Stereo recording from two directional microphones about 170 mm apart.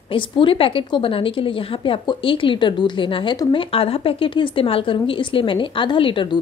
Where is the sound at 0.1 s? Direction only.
30° left (ahead or behind).